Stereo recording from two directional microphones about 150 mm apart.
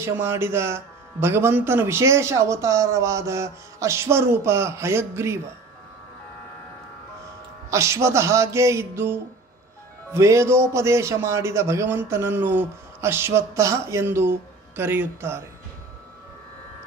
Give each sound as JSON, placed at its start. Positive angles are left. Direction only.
{"t": 0.0, "sound": "a man's voice", "side_deg": -15}
{"t": 7.7, "sound": "music", "side_deg": -20}
{"t": 10.1, "sound": "a man's voice", "side_deg": -20}